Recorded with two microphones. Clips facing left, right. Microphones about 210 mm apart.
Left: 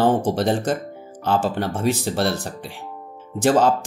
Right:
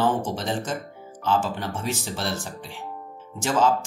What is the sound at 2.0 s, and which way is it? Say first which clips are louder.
Speech: left 8 dB; 65° left (ahead or behind).